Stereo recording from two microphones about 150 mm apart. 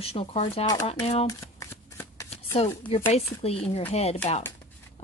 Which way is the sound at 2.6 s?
40° left (ahead or behind).